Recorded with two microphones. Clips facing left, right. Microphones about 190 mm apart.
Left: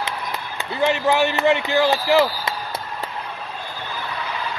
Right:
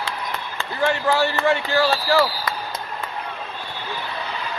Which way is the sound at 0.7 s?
20° left (ahead or behind).